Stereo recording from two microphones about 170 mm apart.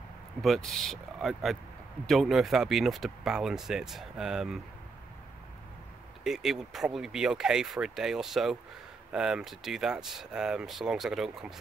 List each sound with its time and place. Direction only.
0.4 s speech: centre (ahead or behind)
6.2 s speech: centre (ahead or behind)